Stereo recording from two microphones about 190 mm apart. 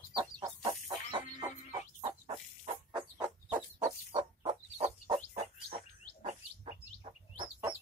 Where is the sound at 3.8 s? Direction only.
25° right (ahead or behind).